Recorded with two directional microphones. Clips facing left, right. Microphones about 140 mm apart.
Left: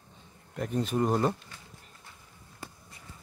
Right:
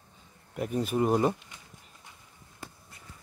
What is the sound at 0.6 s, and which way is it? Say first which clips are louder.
Speech: right 1 dB; 5° right (ahead or behind).